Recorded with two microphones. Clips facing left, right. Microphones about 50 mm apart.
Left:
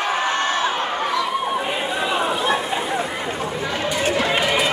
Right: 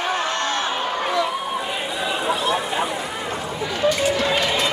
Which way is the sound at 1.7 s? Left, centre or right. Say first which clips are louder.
Left 3 dB; left.